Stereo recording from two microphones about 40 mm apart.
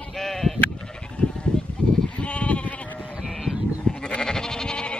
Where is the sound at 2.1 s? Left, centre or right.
Left.